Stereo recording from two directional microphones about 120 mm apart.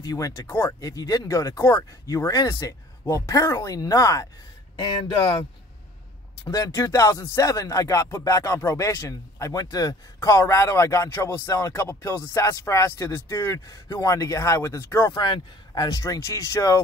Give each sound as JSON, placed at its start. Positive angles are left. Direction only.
{"t": 0.0, "sound": "speech", "side_deg": 30}
{"t": 4.7, "sound": "speech", "side_deg": 40}
{"t": 6.4, "sound": "speech", "side_deg": 30}
{"t": 15.1, "sound": "speech", "side_deg": 40}